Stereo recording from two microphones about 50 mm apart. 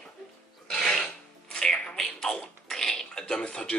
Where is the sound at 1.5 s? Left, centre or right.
Centre.